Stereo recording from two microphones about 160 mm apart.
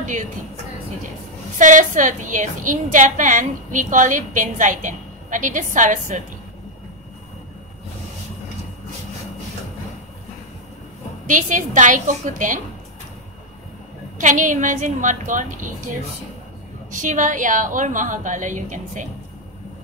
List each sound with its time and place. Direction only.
1.6 s a woman's voice: 55° right (ahead or behind)
11.2 s a woman's voice: 55° right (ahead or behind)
14.1 s a woman's voice: 55° right (ahead or behind)
16.9 s a woman's voice: 50° right (ahead or behind)